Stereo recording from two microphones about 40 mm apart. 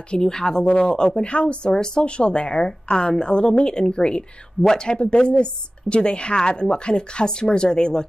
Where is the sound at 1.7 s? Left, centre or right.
Centre.